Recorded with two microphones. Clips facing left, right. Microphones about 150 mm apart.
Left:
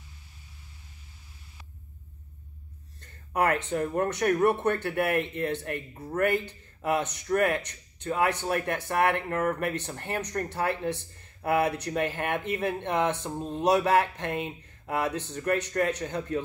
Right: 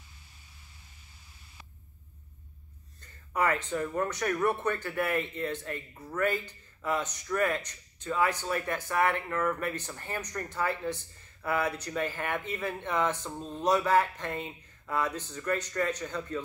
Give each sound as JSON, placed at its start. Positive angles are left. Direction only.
{"t": 3.0, "sound": "a sound", "side_deg": 60}
{"t": 3.8, "sound": "speech", "side_deg": 55}
{"t": 13.2, "sound": "speech", "side_deg": 20}
{"t": 13.7, "sound": "speech", "side_deg": 65}